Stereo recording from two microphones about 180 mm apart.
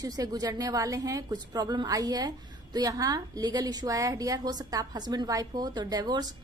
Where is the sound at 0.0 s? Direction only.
20° right (ahead or behind).